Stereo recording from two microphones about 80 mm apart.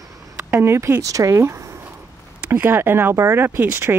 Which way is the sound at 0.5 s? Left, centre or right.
Right.